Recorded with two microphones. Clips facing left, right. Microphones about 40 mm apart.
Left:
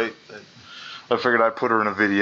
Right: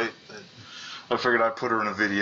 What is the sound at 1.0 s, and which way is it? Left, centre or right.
Speech, centre.